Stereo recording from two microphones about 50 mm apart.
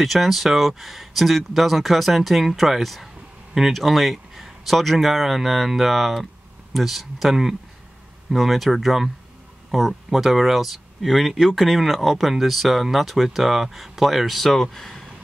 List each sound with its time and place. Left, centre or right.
0.0 s speech: centre